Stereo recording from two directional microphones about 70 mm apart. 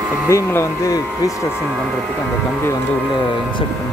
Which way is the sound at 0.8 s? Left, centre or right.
Left.